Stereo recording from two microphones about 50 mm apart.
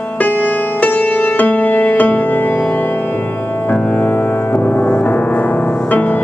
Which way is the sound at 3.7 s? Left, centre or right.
Left.